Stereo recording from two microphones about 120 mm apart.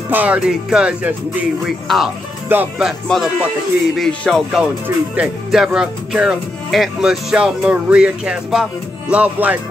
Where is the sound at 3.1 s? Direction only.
5° left (ahead or behind).